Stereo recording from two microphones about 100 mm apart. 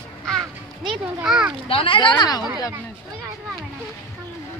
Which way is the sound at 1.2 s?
5° right (ahead or behind).